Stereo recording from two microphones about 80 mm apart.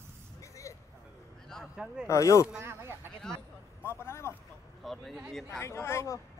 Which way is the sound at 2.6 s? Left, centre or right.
Right.